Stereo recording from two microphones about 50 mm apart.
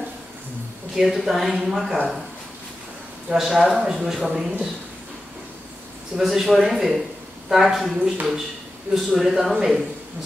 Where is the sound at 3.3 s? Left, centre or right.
Centre.